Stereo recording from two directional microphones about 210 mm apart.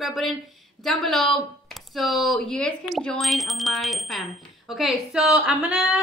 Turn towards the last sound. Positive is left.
turn(degrees=-5)  # may be behind; listen again after turning